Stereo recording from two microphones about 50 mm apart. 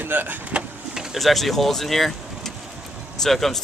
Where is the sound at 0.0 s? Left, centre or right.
Right.